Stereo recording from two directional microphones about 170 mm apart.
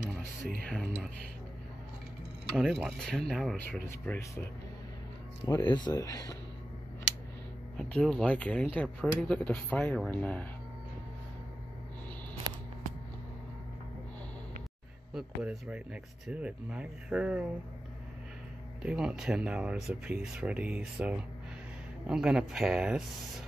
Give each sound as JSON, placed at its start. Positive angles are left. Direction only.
{"t": 0.7, "sound": "speech", "side_deg": 0}
{"t": 2.5, "sound": "speech", "side_deg": 0}
{"t": 5.4, "sound": "speech", "side_deg": 25}
{"t": 7.7, "sound": "speech", "side_deg": 5}
{"t": 15.1, "sound": "speech", "side_deg": -5}
{"t": 18.8, "sound": "speech", "side_deg": -5}